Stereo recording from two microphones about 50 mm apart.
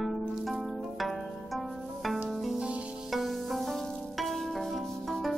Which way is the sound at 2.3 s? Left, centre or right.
Centre.